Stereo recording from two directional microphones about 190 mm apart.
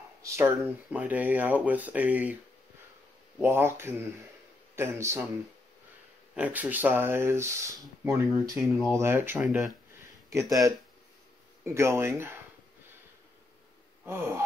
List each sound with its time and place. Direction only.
0.2 s speech: 15° right (ahead or behind)
3.4 s speech: 15° right (ahead or behind)
6.3 s speech: 10° right (ahead or behind)
10.3 s speech: 20° right (ahead or behind)
14.0 s speech: 15° right (ahead or behind)